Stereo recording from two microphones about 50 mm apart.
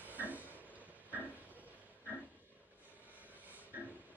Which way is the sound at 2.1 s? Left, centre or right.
Right.